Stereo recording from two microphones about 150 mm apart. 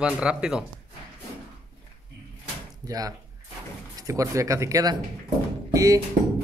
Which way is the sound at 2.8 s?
25° right (ahead or behind).